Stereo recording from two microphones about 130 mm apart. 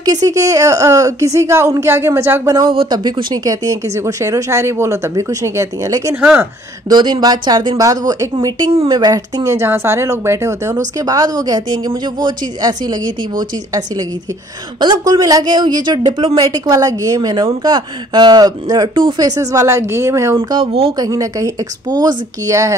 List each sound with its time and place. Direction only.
0.0 s speech: 30° right (ahead or behind)
2.7 s a woman's voice: 40° right (ahead or behind); by 20.3 s 20° right (ahead or behind)
20.3 s a woman's voice: 40° right (ahead or behind)
21.0 s speech: 25° right (ahead or behind)